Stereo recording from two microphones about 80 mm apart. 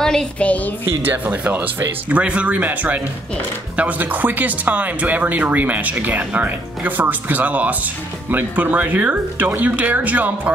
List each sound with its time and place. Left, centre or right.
0.0 s a sound: centre
0.4 s a woman's voice: centre
1.0 s speech: right